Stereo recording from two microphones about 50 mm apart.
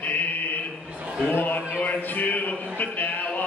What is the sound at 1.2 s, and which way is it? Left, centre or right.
Speech, left.